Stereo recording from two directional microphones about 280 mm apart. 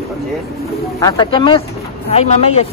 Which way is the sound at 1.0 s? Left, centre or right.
Centre.